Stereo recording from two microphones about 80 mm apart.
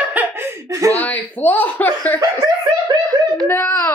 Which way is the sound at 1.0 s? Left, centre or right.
Left.